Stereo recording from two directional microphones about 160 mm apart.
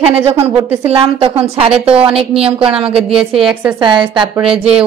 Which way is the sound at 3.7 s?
30° right (ahead or behind).